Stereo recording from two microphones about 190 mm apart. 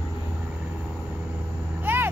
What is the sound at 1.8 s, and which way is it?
Vehicle, 10° right (ahead or behind).